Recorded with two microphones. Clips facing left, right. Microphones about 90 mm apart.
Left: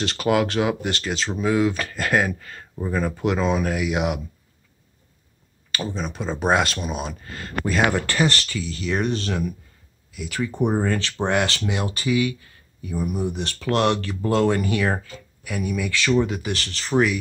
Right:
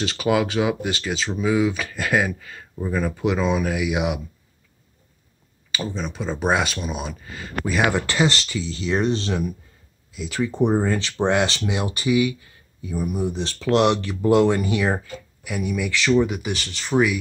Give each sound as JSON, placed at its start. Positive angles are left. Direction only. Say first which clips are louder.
{"t": 0.0, "sound": "speech", "louder": "even", "side_deg": -5}
{"t": 5.7, "sound": "speech", "louder": "even", "side_deg": 0}
{"t": 11.6, "sound": "speech", "louder": "right 1 dB", "side_deg": -10}
{"t": 13.0, "sound": "speech", "louder": "right 1 dB", "side_deg": 0}
{"t": 13.7, "sound": "speech", "louder": "right 2 dB", "side_deg": -15}